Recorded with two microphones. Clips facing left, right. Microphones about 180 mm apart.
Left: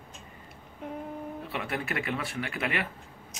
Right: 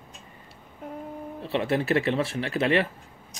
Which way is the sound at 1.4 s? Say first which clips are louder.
Right 11 dB; 25° right (ahead or behind).